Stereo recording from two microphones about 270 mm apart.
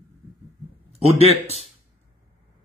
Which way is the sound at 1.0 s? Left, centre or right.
Right.